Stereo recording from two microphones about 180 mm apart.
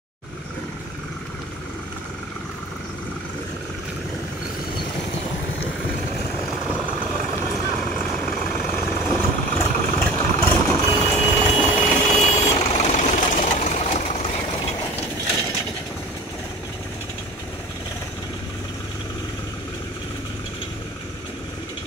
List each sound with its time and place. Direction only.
7.9 s vehicle: 10° left (ahead or behind); by 14.2 s 35° left (ahead or behind)